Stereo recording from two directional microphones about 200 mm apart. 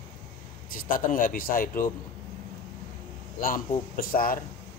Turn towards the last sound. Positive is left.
turn(degrees=45)  # may be behind; listen again after turning